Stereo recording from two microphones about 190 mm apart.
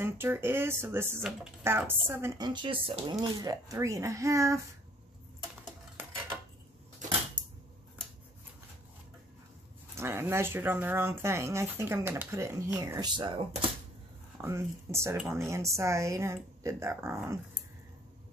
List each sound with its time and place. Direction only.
0.0 s speech: 10° right (ahead or behind)
9.9 s speech: 15° right (ahead or behind)
14.4 s speech: 15° right (ahead or behind)